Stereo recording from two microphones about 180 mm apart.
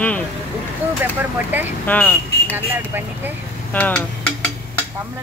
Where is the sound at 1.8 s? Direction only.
10° left (ahead or behind).